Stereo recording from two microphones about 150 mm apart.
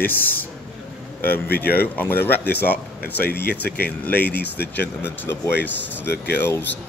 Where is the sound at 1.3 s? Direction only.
90° left.